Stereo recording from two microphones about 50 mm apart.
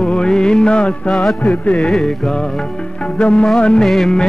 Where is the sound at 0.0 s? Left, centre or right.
Centre.